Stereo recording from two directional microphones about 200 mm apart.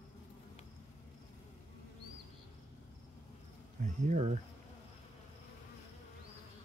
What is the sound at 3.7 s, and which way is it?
Speech, 35° right (ahead or behind).